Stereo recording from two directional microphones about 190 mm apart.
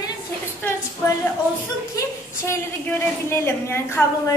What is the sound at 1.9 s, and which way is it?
A woman's voice, 15° left (ahead or behind).